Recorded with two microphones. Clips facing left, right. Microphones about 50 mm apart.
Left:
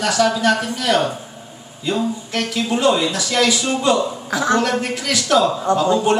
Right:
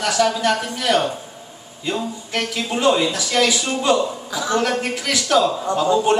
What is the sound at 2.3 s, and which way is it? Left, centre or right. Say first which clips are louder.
A man's voice: left 1 dB; centre.